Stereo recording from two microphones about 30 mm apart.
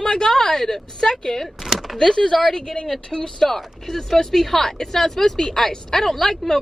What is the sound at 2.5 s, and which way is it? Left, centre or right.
Speech, left.